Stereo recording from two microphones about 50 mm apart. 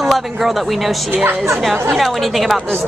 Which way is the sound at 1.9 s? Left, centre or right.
Centre.